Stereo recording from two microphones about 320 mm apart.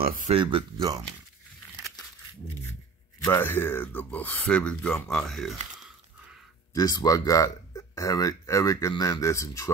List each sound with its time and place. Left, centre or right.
0.0 s speech: right
3.3 s speech: centre
6.7 s speech: centre